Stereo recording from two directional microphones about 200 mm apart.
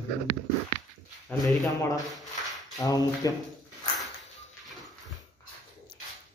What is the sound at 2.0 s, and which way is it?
Speech, centre (ahead or behind).